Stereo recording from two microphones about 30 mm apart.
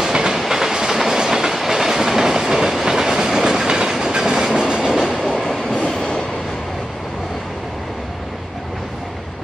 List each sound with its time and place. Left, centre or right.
0.0 s train: right
5.5 s train: centre